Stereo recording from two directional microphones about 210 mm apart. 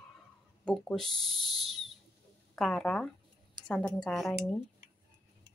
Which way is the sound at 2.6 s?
5° left (ahead or behind).